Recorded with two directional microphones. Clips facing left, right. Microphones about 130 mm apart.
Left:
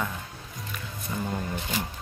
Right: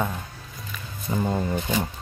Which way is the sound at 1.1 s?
30° right (ahead or behind).